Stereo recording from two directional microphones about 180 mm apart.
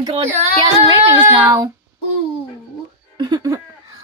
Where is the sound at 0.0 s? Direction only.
30° right (ahead or behind).